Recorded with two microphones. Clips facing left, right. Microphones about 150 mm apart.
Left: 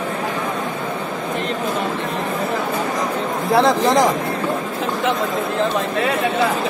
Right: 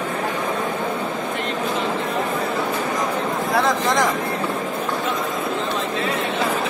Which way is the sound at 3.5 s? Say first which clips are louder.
Left 6 dB; 30° left (ahead or behind).